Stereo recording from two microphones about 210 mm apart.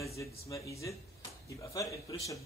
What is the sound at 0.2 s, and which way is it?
A man's voice, 15° left (ahead or behind).